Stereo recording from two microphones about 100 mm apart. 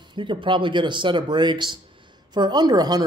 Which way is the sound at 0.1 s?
55° right (ahead or behind).